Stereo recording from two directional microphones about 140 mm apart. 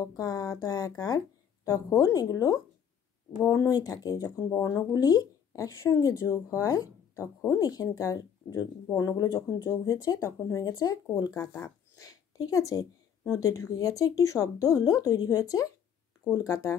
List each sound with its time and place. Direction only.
0.0 s speech: 25° left (ahead or behind)